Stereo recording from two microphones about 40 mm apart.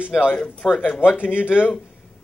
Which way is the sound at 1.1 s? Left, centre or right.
Left.